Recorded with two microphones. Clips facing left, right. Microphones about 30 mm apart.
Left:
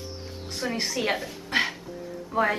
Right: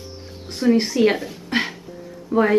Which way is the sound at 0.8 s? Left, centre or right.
Centre.